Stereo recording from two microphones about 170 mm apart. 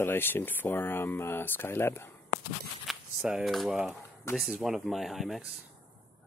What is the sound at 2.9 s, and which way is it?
Speech, centre (ahead or behind).